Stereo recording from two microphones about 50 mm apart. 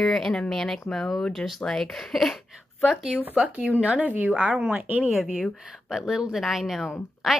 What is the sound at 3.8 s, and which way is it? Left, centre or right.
Speech, right.